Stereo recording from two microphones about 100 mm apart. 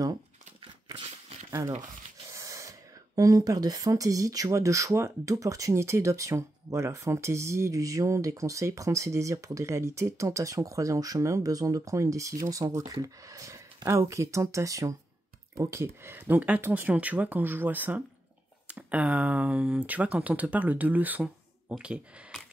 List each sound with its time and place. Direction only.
2.3 s snort: 30° right (ahead or behind)
3.2 s speech: 35° right (ahead or behind); by 22.0 s 10° right (ahead or behind)